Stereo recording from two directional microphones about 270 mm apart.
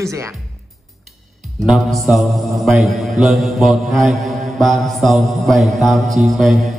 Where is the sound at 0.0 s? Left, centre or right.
Centre.